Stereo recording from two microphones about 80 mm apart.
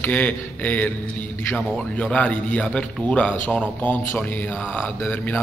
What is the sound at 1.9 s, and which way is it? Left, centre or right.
A man's voice, centre.